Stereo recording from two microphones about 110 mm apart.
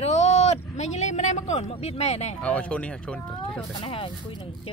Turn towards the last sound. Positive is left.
turn(degrees=50)  # may be behind; listen again after turning